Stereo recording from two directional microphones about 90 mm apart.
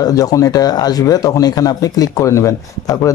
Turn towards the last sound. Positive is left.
turn(degrees=40)  # may be behind; listen again after turning